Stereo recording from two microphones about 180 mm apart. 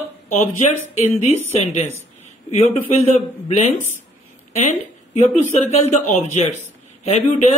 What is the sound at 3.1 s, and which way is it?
A man's voice, 40° left (ahead or behind).